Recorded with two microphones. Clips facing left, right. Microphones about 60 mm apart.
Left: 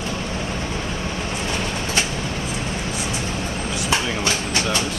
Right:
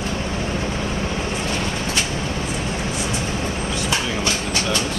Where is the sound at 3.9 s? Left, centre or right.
Left.